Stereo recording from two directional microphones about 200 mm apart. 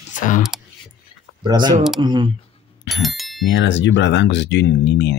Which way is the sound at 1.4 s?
20° right (ahead or behind).